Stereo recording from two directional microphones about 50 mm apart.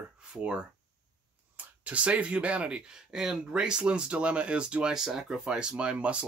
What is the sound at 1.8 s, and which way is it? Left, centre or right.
Speech, right.